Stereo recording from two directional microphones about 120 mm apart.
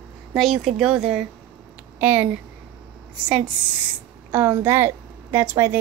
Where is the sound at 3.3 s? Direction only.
5° right (ahead or behind).